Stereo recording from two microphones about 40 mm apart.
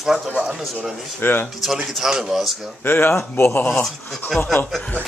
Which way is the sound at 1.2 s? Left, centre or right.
Left.